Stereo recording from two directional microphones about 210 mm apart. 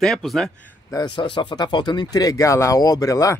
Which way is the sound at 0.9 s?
20° left (ahead or behind).